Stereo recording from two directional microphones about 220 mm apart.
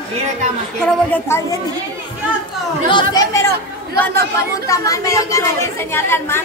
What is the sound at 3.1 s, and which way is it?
Speech, 15° left (ahead or behind).